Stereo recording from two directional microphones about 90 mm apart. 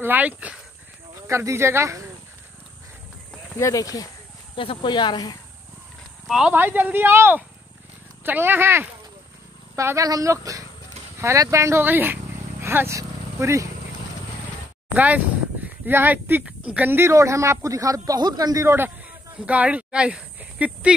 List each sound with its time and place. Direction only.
0.0 s speech: 20° right (ahead or behind)
1.2 s a man's voice: 30° right (ahead or behind)
3.5 s speech: 35° left (ahead or behind)
4.6 s speech: 65° left (ahead or behind); by 5.4 s 45° left (ahead or behind)
6.2 s speech: 5° right (ahead or behind)
6.5 s speech: 20° right (ahead or behind)
9.8 s a man's voice: 35° right (ahead or behind)
15.0 s speech: 20° right (ahead or behind)
17.1 s a man's voice: 35° right (ahead or behind)
18.7 s a man's voice: 25° right (ahead or behind)